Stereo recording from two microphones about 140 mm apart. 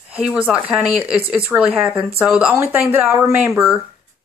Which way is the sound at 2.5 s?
15° right (ahead or behind).